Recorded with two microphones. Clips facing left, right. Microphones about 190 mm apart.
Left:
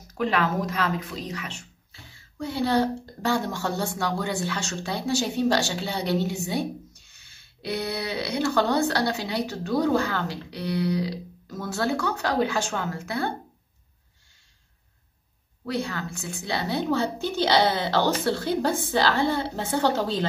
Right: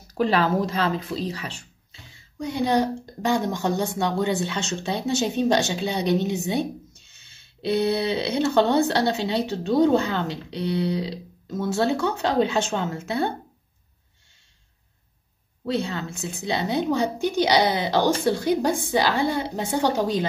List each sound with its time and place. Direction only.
0.1 s speech: 35° right (ahead or behind)
1.9 s a woman's voice: 15° right (ahead or behind)
15.6 s a woman's voice: 25° right (ahead or behind)